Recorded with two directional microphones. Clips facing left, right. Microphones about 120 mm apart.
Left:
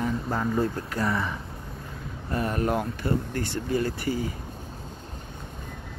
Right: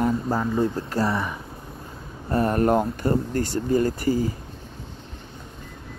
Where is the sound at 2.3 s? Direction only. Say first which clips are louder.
Right 6 dB; 40° right (ahead or behind).